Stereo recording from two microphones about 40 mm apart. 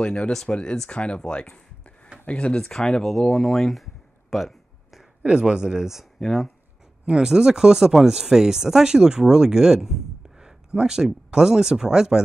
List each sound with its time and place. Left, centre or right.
0.0 s speech: left
2.6 s speech: centre
5.3 s speech: centre
6.2 s speech: centre
7.1 s speech: centre